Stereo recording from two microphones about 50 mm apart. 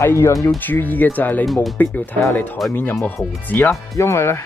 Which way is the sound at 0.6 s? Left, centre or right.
Left.